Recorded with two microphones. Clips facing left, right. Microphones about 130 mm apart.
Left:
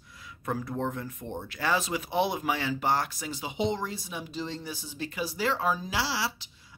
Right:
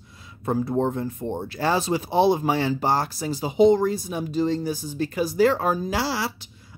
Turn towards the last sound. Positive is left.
turn(degrees=-50)  # may be behind; listen again after turning